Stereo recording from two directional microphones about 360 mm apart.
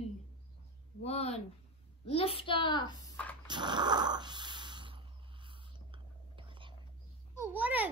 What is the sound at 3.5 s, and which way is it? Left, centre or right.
Snoring, centre.